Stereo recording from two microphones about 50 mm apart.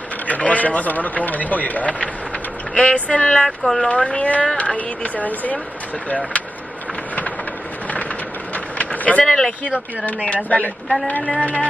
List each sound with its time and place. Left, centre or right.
0.3 s speech: left
3.4 s speech: centre
3.9 s speech: left
8.5 s vehicle: left
9.2 s speech: centre
9.7 s speech: left